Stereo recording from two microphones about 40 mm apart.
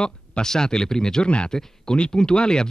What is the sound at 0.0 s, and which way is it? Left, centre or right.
Speech, centre.